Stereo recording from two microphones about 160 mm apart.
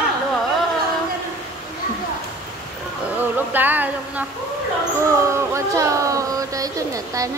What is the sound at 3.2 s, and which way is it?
Speech, 10° right (ahead or behind).